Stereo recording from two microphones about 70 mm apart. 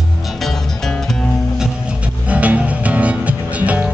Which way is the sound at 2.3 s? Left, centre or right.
Right.